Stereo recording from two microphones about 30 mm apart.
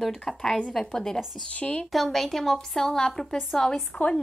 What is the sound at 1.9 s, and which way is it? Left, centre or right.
A woman's voice, centre.